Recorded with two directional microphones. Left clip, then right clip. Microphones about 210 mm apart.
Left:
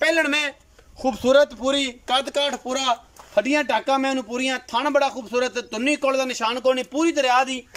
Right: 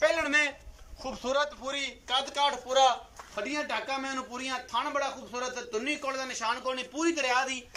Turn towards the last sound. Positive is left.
turn(degrees=45)  # may be behind; listen again after turning